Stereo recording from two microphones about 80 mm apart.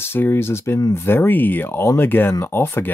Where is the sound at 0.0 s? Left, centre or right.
Left.